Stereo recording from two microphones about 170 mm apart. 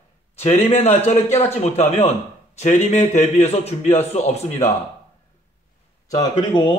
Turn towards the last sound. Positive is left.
turn(degrees=25)  # may be behind; listen again after turning